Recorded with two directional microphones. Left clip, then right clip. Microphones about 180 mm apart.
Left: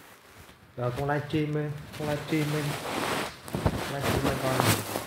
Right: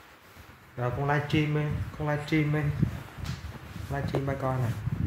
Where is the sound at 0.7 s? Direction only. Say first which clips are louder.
Right 1 dB; 5° right (ahead or behind).